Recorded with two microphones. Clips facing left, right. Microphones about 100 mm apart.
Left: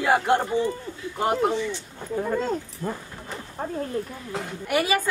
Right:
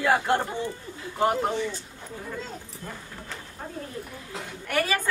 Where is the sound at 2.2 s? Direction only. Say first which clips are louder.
Left 11 dB; 60° left (ahead or behind).